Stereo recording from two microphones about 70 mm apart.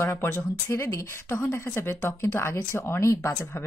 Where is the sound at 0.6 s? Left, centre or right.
Left.